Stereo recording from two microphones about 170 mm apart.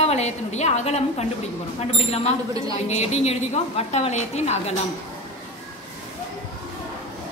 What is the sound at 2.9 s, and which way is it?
A woman's voice, 40° left (ahead or behind).